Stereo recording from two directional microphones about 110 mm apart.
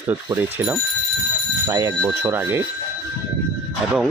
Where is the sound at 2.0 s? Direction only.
20° right (ahead or behind).